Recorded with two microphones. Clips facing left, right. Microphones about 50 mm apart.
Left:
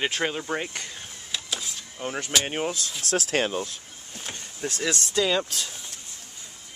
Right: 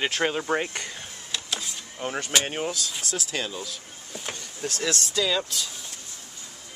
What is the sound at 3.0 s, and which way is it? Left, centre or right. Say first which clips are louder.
Speech: left 9 dB; left.